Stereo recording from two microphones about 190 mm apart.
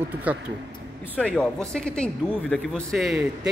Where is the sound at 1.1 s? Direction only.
5° left (ahead or behind).